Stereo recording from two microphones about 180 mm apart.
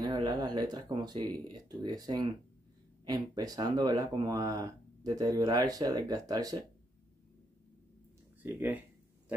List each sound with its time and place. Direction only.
0.0 s speech: 20° right (ahead or behind)
8.4 s speech: 10° right (ahead or behind)